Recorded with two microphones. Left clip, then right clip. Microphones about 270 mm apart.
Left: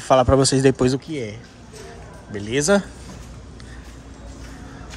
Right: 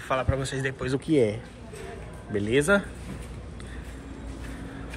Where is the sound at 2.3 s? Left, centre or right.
Centre.